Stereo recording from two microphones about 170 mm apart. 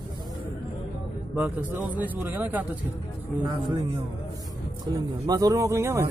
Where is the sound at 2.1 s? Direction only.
10° right (ahead or behind).